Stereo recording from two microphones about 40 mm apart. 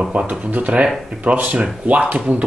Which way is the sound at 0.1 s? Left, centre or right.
Right.